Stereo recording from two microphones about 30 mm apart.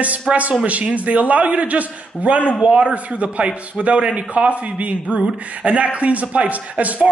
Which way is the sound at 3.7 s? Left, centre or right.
Right.